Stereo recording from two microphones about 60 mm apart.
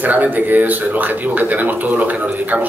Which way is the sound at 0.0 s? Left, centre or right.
Right.